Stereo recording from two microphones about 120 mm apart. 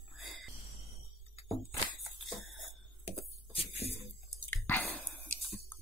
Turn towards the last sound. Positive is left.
turn(degrees=15)  # may be behind; listen again after turning